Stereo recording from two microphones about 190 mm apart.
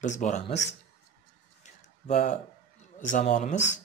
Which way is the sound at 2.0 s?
40° left (ahead or behind).